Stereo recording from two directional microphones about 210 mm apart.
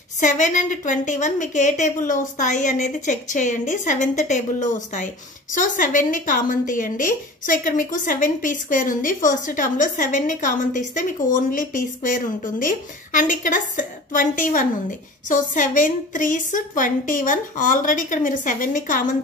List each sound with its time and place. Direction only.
0.2 s a woman's voice: 35° left (ahead or behind)